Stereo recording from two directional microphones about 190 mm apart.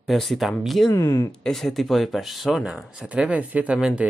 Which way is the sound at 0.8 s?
15° left (ahead or behind).